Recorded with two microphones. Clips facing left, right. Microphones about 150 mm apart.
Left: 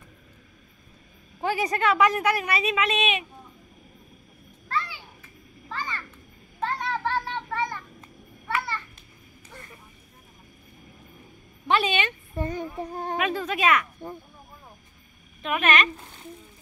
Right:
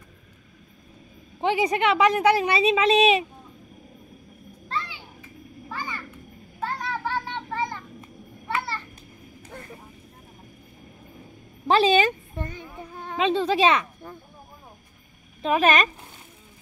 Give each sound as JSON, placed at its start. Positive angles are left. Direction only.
{"t": 1.4, "sound": "a woman's voice", "side_deg": -20}
{"t": 4.6, "sound": "children playing", "side_deg": -25}
{"t": 5.7, "sound": "a sound", "side_deg": -10}
{"t": 7.5, "sound": "child singing", "side_deg": -25}
{"t": 8.5, "sound": "a sound", "side_deg": -30}
{"t": 11.6, "sound": "a sound", "side_deg": -35}
{"t": 12.4, "sound": "child singing", "side_deg": 40}
{"t": 13.2, "sound": "a woman's voice", "side_deg": -25}
{"t": 15.4, "sound": "speech", "side_deg": -35}